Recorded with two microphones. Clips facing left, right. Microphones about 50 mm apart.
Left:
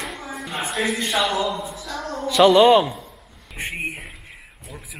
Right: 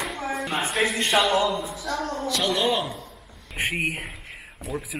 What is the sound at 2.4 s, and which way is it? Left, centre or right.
Speech, left.